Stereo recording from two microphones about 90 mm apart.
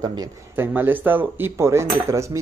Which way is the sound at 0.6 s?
20° right (ahead or behind).